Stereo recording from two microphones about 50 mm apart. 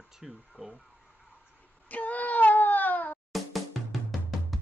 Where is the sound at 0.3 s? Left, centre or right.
Centre.